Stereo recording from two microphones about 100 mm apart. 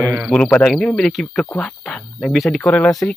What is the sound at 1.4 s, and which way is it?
Speech, 15° left (ahead or behind).